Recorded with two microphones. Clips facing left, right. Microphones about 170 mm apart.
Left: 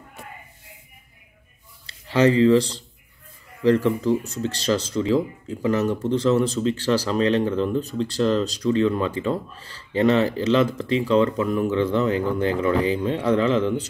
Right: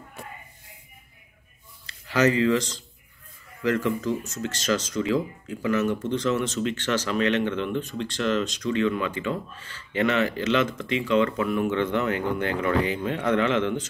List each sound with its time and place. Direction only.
1.9 s speech: 30° left (ahead or behind)